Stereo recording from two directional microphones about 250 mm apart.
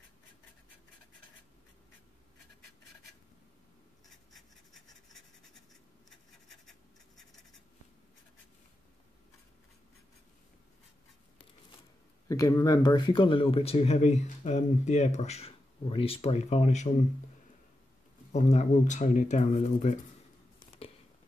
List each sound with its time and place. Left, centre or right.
4.3 s a sound: centre
6.0 s scratch: centre
12.3 s speech: centre
18.3 s speech: left